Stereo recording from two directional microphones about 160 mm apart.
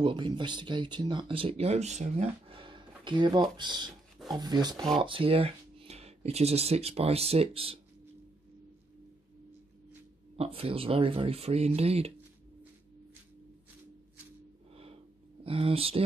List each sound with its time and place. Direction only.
0.0 s speech: 30° right (ahead or behind)
10.3 s speech: 40° right (ahead or behind)
15.4 s speech: 35° right (ahead or behind)